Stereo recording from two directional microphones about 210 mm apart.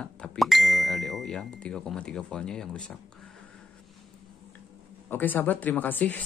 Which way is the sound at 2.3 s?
5° left (ahead or behind).